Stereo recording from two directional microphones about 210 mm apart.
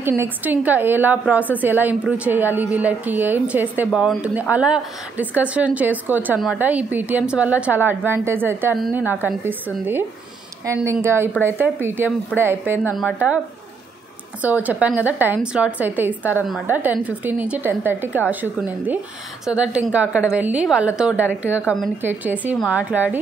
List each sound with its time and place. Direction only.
0.2 s a woman's voice: 10° right (ahead or behind)
14.4 s a woman's voice: 5° right (ahead or behind)